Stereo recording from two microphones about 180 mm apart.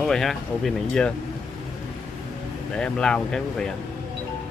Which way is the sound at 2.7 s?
5° left (ahead or behind).